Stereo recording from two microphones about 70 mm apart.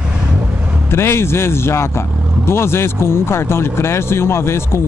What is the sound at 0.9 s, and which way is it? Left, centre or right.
Speech, left.